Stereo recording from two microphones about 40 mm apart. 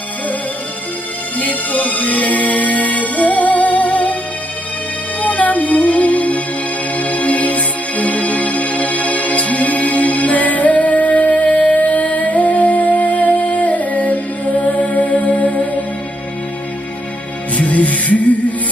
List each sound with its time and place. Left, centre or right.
1.4 s music: left
5.2 s music: left
17.6 s music: left